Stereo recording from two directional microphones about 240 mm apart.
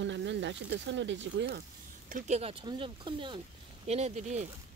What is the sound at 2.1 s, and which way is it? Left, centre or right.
Speech, right.